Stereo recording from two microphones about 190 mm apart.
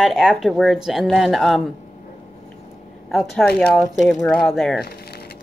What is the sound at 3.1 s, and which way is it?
A woman's voice, centre (ahead or behind).